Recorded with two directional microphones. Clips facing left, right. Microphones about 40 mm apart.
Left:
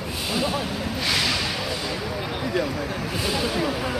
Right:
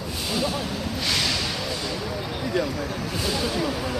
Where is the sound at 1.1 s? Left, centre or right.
Centre.